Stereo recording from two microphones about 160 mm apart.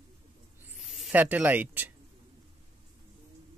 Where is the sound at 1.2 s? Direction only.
10° right (ahead or behind).